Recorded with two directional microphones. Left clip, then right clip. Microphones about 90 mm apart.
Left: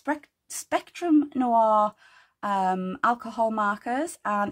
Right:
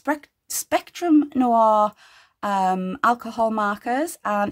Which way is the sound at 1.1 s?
60° right (ahead or behind).